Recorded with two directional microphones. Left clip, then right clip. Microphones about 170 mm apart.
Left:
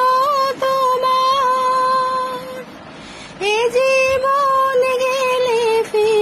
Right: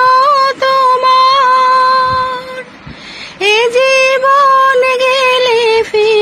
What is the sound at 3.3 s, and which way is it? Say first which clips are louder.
Female singing: right 7 dB; 20° right (ahead or behind).